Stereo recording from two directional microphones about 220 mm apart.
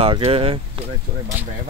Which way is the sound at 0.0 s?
25° right (ahead or behind).